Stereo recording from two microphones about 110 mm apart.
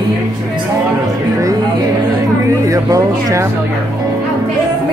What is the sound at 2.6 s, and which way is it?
Music, 30° right (ahead or behind).